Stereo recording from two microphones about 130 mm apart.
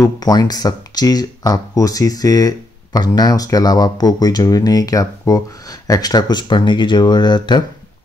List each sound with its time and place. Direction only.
0.0 s speech: 30° left (ahead or behind)